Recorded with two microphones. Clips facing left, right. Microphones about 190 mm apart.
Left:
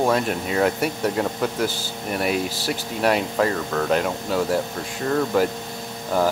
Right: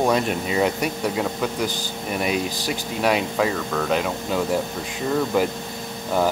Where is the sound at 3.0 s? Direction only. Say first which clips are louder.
Left 1 dB; 5° right (ahead or behind).